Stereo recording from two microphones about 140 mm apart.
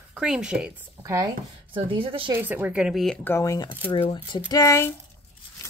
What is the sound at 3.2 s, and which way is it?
Speech, 15° left (ahead or behind).